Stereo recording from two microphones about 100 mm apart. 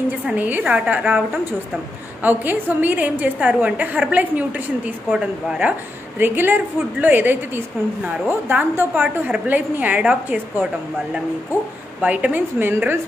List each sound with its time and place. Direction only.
0.3 s a woman's voice: 15° right (ahead or behind)
2.2 s a woman's voice: 20° right (ahead or behind)
12.0 s a woman's voice: 15° right (ahead or behind)